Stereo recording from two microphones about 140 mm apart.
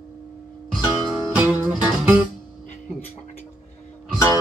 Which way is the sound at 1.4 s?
10° right (ahead or behind).